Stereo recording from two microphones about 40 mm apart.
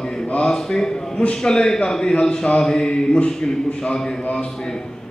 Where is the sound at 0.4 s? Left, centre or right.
Centre.